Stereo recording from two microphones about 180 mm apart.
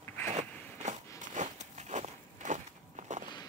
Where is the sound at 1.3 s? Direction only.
40° right (ahead or behind).